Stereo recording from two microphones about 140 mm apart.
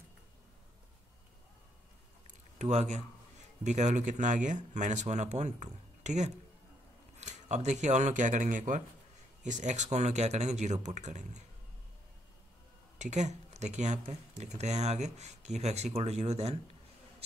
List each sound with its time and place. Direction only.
2.2 s a sound: 55° right (ahead or behind)
3.6 s speech: 60° right (ahead or behind)
13.0 s speech: 55° right (ahead or behind)